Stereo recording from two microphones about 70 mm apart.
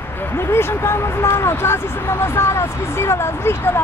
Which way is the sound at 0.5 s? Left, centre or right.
Left.